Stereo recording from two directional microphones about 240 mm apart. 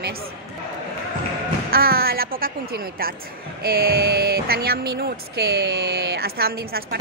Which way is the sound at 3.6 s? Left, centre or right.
Right.